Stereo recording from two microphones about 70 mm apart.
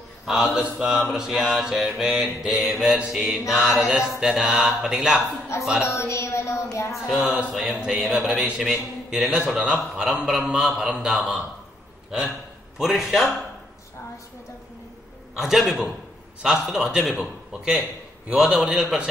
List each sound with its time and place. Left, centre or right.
0.2 s mantra: centre
5.5 s speech: left
5.9 s a sound: left
7.1 s mantra: centre
12.7 s a man's voice: centre
15.3 s a man's voice: centre
16.4 s mantra: centre